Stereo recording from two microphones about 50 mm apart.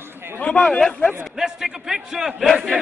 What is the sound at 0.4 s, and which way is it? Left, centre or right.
Speech, centre.